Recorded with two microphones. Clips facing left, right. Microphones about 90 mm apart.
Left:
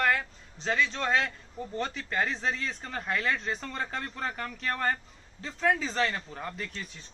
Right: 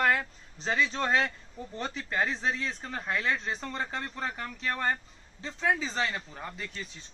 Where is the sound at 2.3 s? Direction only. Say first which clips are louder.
Even; 10° right (ahead or behind).